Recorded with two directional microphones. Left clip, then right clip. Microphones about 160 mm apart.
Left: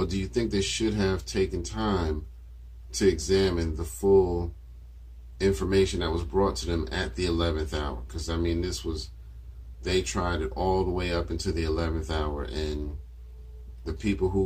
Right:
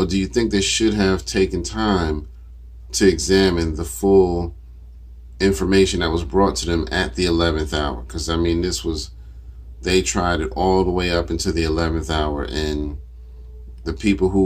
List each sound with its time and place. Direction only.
0.0 s speech: 20° right (ahead or behind)
13.8 s speech: 25° right (ahead or behind)